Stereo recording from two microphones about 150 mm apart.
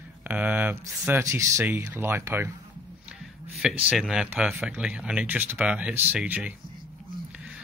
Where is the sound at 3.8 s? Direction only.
5° right (ahead or behind).